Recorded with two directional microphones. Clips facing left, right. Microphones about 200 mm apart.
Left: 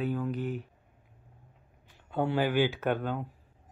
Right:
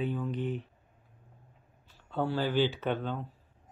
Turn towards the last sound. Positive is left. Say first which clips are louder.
# left 2 dB
turn(degrees=10)  # may be behind; listen again after turning